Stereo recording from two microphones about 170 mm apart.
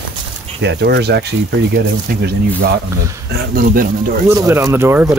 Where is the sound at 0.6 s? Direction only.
85° right.